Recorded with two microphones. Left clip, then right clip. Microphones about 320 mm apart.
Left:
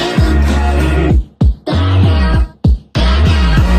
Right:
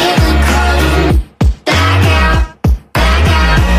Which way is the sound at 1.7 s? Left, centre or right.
Right.